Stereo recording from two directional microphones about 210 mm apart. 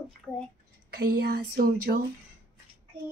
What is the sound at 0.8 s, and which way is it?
Speech, 50° right (ahead or behind).